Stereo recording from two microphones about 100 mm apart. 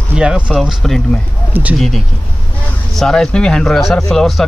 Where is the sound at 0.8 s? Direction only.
5° left (ahead or behind).